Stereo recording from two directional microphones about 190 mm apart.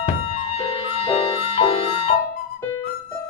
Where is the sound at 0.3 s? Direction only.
30° left (ahead or behind).